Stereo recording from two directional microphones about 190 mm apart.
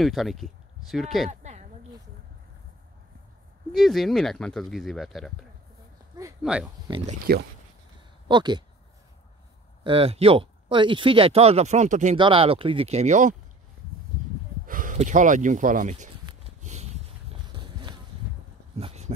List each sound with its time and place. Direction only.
0.0 s speech: centre (ahead or behind)
1.3 s a sound: 35° right (ahead or behind)
3.7 s speech: centre (ahead or behind)
6.4 s speech: centre (ahead or behind)
7.3 s speech: 50° right (ahead or behind)
8.3 s speech: 25° right (ahead or behind)
9.8 s speech: 30° right (ahead or behind)
12.2 s speech: 25° right (ahead or behind)
14.7 s speech: 45° right (ahead or behind)
16.3 s a sound: 35° right (ahead or behind)